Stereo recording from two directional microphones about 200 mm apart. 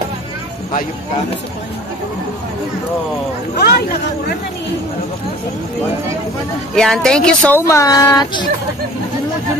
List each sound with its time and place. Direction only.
3.5 s speech: 55° left (ahead or behind)
6.7 s speech: centre (ahead or behind); by 8.5 s 20° left (ahead or behind)